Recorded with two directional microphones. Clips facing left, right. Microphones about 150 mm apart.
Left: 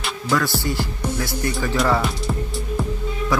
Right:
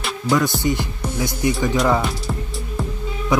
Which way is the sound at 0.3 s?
20° right (ahead or behind).